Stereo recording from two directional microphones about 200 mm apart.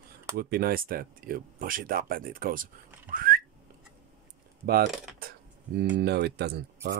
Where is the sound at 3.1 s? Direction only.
45° right (ahead or behind).